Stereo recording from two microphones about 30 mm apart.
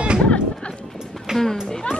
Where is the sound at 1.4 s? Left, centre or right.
Centre.